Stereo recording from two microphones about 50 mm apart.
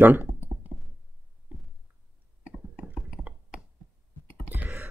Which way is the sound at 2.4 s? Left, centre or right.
Right.